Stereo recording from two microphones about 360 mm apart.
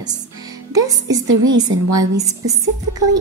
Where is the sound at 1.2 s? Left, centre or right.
Right.